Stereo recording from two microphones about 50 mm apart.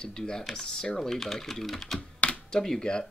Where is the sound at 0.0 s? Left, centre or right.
Centre.